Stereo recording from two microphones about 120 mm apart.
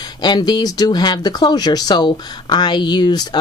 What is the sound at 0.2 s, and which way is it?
Speech, 35° left (ahead or behind).